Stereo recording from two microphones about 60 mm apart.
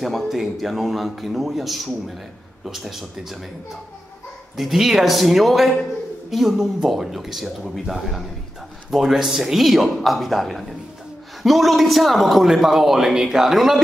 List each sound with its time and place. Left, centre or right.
0.0 s a man's voice: centre
4.6 s a man's voice: centre